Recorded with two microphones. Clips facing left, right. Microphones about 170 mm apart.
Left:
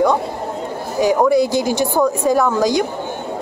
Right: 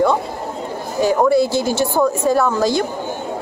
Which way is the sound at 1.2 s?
15° left (ahead or behind).